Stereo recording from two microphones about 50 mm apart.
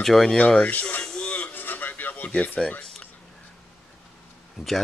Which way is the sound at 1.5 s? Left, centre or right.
Left.